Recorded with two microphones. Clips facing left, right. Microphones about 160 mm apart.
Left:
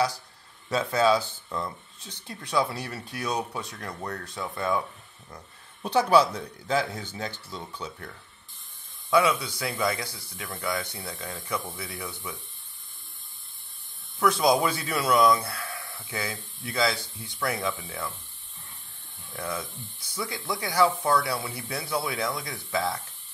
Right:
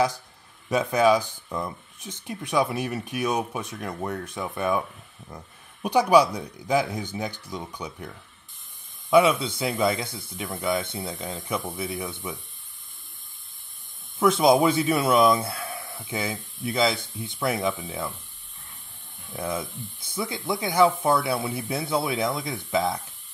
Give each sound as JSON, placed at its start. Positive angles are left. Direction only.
{"t": 0.7, "sound": "speech", "side_deg": -15}
{"t": 14.2, "sound": "speech", "side_deg": -20}
{"t": 19.3, "sound": "speech", "side_deg": -20}